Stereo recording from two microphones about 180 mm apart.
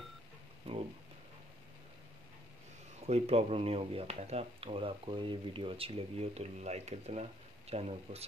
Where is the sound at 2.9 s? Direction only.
35° right (ahead or behind).